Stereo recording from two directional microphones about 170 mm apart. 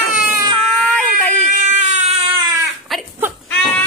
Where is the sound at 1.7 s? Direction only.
45° right (ahead or behind).